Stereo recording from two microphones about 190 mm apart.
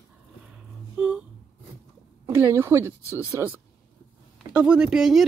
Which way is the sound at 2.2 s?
10° right (ahead or behind).